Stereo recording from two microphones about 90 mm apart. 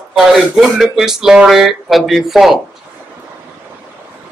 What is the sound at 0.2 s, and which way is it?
Speech, 5° right (ahead or behind).